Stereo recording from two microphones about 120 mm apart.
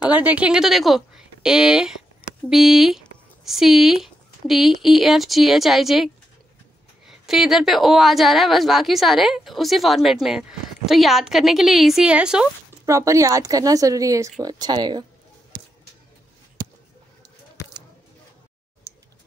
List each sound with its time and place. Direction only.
0.1 s speech: 10° right (ahead or behind)
7.1 s speech: 5° right (ahead or behind)
12.8 s speech: 25° right (ahead or behind)
18.9 s tick: 20° right (ahead or behind)